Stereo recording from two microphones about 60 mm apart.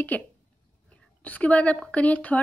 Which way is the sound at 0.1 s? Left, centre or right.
Left.